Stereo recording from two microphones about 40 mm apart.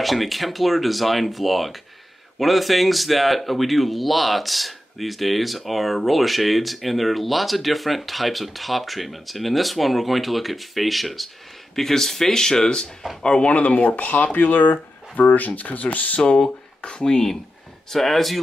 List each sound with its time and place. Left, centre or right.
0.0 s speech: centre; by 13.5 s left
13.5 s speech: left
16.2 s speech: left
17.9 s speech: centre